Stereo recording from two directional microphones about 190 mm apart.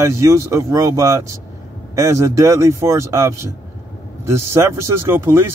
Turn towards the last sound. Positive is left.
turn(degrees=-15)  # may be behind; listen again after turning